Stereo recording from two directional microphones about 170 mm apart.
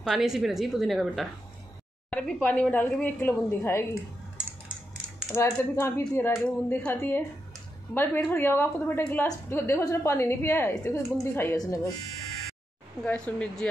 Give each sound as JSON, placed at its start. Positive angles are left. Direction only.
{"t": 0.0, "sound": "a woman's voice", "side_deg": 0}
{"t": 2.0, "sound": "a sound", "side_deg": 5}
{"t": 2.4, "sound": "a woman's voice", "side_deg": 10}
{"t": 5.3, "sound": "a woman's voice", "side_deg": 15}
{"t": 13.0, "sound": "a woman's voice", "side_deg": 5}